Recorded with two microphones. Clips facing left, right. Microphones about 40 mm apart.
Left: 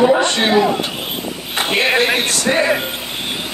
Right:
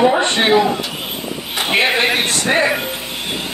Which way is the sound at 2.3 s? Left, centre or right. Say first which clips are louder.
Even; right.